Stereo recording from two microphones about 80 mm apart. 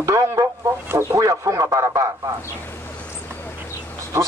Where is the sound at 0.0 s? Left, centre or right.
Right.